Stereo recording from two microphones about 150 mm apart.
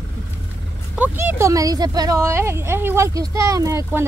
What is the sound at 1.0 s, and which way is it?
Speech, 15° right (ahead or behind).